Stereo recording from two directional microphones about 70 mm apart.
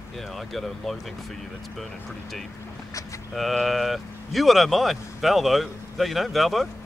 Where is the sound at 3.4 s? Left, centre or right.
Centre.